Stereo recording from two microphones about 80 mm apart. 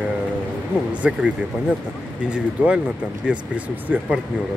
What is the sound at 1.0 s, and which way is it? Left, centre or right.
Speech, centre.